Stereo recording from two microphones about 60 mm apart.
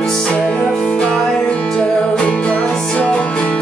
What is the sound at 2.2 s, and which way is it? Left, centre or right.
Music, centre.